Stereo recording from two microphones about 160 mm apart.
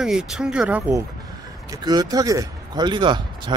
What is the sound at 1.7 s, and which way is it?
Speech, 25° right (ahead or behind).